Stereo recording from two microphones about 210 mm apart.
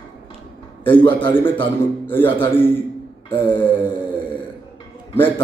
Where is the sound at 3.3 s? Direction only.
10° left (ahead or behind).